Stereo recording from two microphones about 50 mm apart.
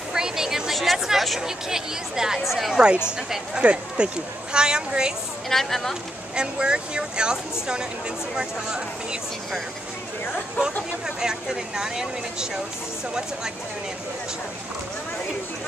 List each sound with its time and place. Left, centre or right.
0.1 s a sound: centre
0.7 s chatter: centre
1.4 s speech: centre
3.1 s speech: centre
5.5 s speech: centre
6.3 s speech: centre
8.4 s speech: centre
11.1 s speech: centre